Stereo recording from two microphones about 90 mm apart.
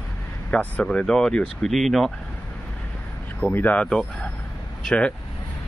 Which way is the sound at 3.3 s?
20° left (ahead or behind).